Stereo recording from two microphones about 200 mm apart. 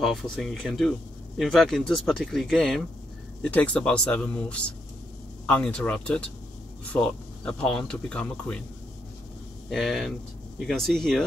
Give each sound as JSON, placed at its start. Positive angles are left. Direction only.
{"t": 0.0, "sound": "speech", "side_deg": 0}
{"t": 9.7, "sound": "speech", "side_deg": 0}